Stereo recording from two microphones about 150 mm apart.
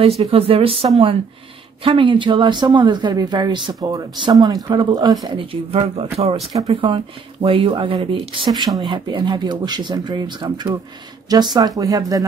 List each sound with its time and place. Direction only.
0.2 s speech: 40° right (ahead or behind); by 5.1 s 25° right (ahead or behind)
5.2 s speech: 35° right (ahead or behind)